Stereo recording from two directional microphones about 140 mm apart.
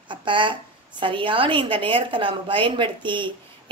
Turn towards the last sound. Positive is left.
turn(degrees=-35)  # may be behind; listen again after turning